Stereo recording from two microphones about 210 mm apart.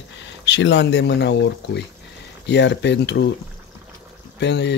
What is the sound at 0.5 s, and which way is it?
Speech, 55° left (ahead or behind).